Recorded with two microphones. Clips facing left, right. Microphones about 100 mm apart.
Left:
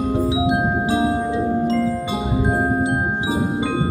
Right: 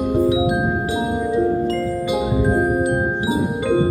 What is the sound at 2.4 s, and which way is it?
Music, 20° left (ahead or behind).